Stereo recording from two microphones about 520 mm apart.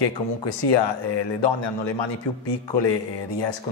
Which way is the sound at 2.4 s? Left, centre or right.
Left.